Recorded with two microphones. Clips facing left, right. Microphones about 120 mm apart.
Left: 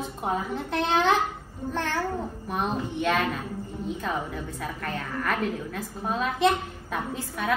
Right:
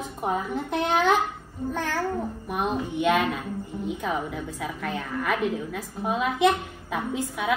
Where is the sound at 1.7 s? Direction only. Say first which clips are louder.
Even; 5° right (ahead or behind).